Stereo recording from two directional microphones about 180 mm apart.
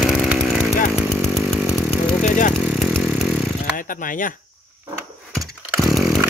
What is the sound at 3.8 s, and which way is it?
Speech, 50° left (ahead or behind).